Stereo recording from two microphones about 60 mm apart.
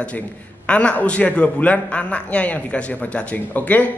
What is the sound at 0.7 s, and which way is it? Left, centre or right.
A man's voice, left.